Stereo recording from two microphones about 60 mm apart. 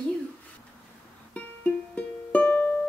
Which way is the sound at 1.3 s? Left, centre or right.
Left.